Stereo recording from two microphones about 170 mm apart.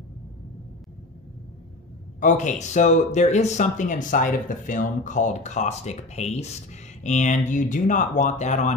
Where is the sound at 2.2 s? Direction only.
45° left (ahead or behind).